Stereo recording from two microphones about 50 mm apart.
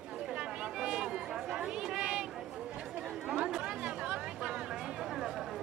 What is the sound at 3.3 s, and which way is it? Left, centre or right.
Chatter, centre.